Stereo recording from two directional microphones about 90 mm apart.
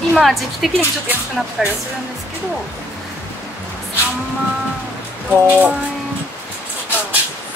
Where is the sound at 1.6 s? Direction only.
5° right (ahead or behind).